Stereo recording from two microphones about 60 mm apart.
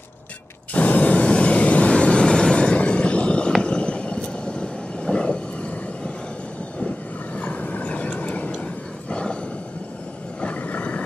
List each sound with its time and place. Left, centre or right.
0.7 s vehicle: left
7.3 s vehicle: left
9.1 s roar: centre
10.4 s vehicle: left